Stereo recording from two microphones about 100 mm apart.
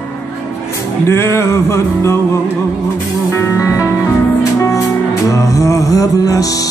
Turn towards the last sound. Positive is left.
turn(degrees=35)  # may be behind; listen again after turning